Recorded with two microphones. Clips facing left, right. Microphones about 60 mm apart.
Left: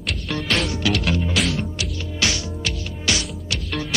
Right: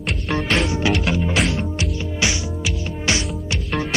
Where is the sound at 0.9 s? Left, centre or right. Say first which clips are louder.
Right 2 dB; centre.